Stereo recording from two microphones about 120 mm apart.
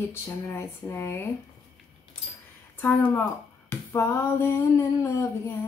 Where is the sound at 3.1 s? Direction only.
20° left (ahead or behind).